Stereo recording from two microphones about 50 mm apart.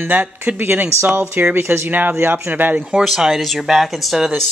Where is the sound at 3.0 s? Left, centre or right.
Centre.